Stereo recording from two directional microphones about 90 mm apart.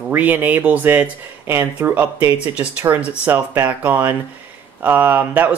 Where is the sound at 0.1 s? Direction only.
20° right (ahead or behind).